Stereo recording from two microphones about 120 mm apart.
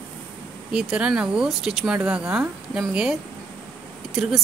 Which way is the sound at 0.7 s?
5° right (ahead or behind).